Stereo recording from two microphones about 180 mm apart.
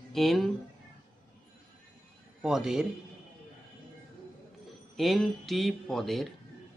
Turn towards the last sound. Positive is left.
turn(degrees=0)  # may be behind; listen again after turning